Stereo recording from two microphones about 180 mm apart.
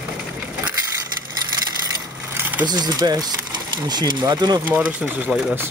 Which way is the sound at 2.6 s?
25° right (ahead or behind).